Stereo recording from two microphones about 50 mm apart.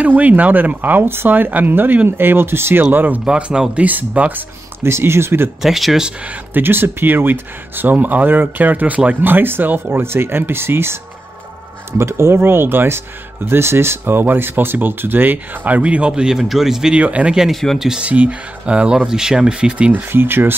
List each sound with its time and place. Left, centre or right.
0.0 s speech: right
2.8 s speech: right
3.3 s speech: centre
3.8 s speech: right
4.8 s speech: right
5.6 s speech: centre
6.2 s speech: right
10.0 s speech: right
12.0 s speech: right; by 16.9 s centre
16.9 s speech: right
17.5 s speech: centre
17.7 s speech: centre
18.0 s speech: right
20.1 s speech: right